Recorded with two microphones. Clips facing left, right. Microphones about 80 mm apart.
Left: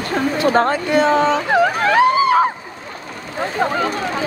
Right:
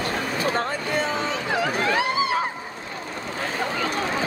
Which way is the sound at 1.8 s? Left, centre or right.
Left.